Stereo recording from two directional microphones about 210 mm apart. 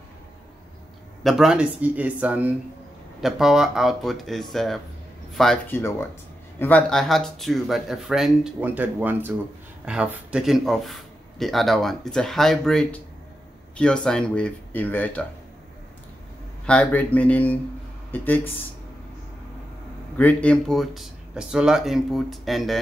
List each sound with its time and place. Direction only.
1.2 s speech: centre (ahead or behind)
16.6 s speech: 5° left (ahead or behind)
20.2 s speech: 5° left (ahead or behind)